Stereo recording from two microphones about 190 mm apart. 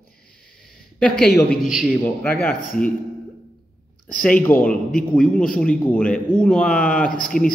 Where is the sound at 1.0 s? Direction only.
5° left (ahead or behind).